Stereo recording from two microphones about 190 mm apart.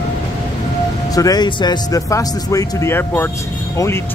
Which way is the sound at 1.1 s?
20° left (ahead or behind).